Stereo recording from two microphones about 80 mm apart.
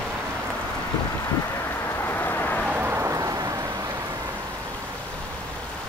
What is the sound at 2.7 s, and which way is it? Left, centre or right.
Vehicle, right.